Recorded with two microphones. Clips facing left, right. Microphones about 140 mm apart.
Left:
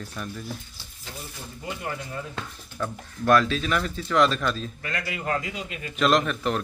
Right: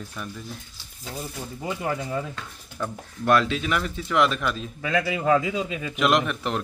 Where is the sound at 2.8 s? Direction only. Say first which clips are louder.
Even; 20° right (ahead or behind).